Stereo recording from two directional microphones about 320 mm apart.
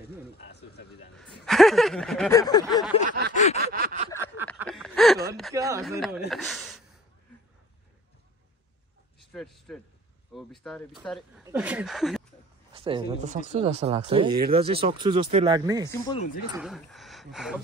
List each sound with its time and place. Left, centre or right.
0.5 s speech: left
1.4 s speech: centre
3.1 s a sound: right
4.6 s a sound: centre
5.5 s speech: centre
9.2 s speech: centre
12.7 s speech: centre
15.8 s speech: centre